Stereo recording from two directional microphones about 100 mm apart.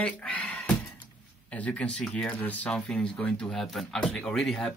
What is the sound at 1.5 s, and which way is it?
Speech, 15° left (ahead or behind).